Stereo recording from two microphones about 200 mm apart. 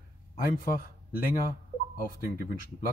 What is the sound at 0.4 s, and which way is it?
Speech, 45° left (ahead or behind).